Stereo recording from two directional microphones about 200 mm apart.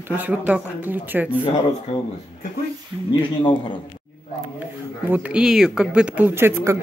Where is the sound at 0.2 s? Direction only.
10° right (ahead or behind).